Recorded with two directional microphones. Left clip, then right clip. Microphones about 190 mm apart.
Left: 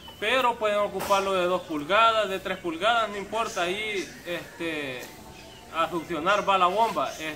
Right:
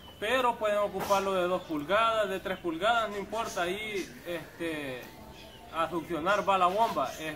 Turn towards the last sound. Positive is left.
turn(degrees=0)  # may be behind; listen again after turning